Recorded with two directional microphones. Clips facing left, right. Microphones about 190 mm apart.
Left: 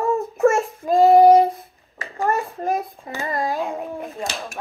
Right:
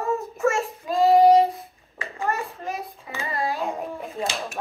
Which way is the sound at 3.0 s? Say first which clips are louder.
Left 5 dB; 35° left (ahead or behind).